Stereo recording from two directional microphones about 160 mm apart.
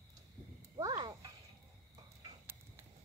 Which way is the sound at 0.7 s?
25° right (ahead or behind).